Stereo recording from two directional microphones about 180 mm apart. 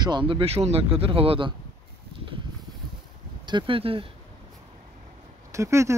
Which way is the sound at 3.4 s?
25° right (ahead or behind).